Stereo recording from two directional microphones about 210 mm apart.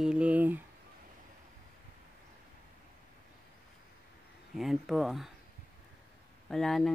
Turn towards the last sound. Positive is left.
turn(degrees=0)  # may be behind; listen again after turning